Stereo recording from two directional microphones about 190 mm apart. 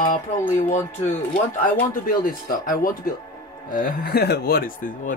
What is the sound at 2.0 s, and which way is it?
Speech, 45° left (ahead or behind).